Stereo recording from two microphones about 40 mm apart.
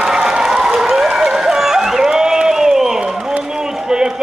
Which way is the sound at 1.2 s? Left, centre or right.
Centre.